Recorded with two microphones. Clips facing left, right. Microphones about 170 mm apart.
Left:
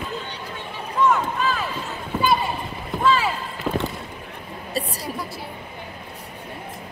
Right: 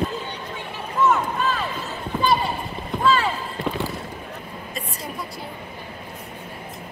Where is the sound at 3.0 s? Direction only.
10° left (ahead or behind).